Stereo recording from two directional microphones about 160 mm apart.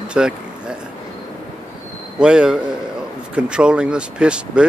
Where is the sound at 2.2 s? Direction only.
5° right (ahead or behind).